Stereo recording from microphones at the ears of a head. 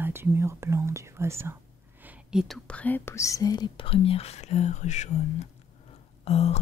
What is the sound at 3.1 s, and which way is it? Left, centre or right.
Speech, left.